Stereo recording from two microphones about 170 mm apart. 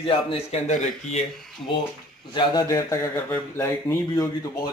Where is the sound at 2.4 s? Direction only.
25° left (ahead or behind).